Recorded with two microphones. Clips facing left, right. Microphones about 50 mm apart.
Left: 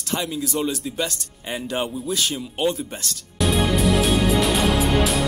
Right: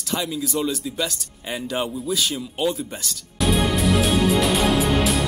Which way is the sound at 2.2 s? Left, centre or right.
Centre.